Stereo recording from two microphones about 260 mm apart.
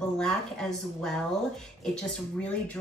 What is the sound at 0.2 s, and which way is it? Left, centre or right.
Speech, centre.